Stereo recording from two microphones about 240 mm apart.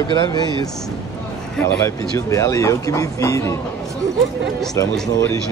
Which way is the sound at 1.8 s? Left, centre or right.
Centre.